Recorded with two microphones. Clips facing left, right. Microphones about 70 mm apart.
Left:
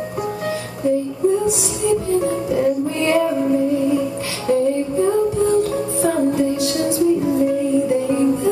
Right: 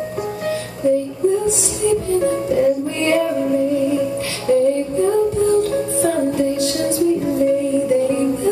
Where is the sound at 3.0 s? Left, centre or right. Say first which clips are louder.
Left 2 dB; centre.